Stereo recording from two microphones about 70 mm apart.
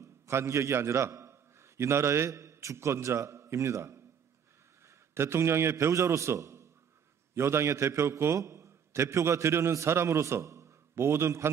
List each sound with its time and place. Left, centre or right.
0.0 s a man's voice: right